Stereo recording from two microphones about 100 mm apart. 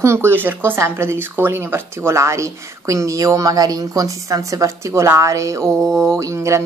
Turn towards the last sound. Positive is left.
turn(degrees=-30)  # may be behind; listen again after turning